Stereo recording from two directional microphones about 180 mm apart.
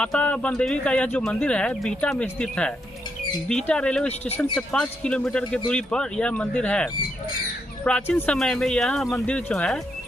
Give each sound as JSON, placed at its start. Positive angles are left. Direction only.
{"t": 0.0, "sound": "speech", "side_deg": 5}